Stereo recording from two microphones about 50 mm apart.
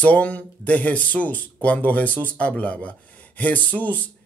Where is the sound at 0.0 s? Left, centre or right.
Left.